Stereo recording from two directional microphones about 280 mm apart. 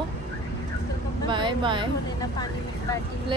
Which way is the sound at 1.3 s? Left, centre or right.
Centre.